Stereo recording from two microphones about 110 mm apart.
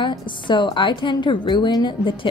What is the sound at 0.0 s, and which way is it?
Speech, 45° left (ahead or behind).